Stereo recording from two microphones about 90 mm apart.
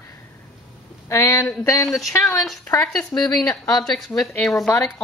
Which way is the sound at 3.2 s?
45° left (ahead or behind).